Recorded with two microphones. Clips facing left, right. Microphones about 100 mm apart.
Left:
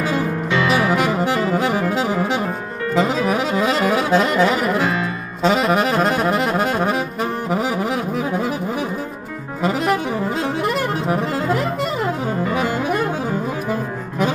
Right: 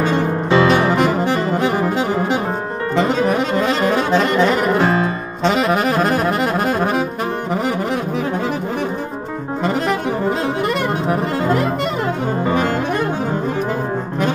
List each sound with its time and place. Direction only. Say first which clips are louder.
0.5 s music: right 6 dB; 35° right (ahead or behind)
0.7 s saxophone: right 2 dB; 5° left (ahead or behind)
3.0 s music: right 2 dB; centre (ahead or behind)
5.4 s saxophone: even; centre (ahead or behind)
9.6 s saxophone: left 1 dB; centre (ahead or behind)
11.1 s music: right 3 dB; centre (ahead or behind)